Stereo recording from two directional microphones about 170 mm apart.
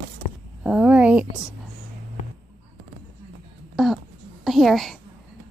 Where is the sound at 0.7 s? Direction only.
5° right (ahead or behind).